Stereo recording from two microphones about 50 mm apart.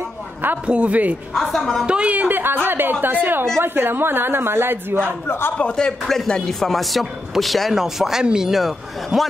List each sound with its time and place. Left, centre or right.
0.7 s speech: right
1.5 s a man's voice: centre
1.9 s speech: right
2.1 s speech: right
5.6 s speech: centre
6.7 s a man's voice: centre